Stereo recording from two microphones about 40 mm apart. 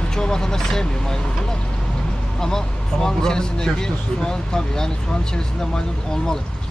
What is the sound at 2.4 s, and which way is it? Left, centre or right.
Speech, centre.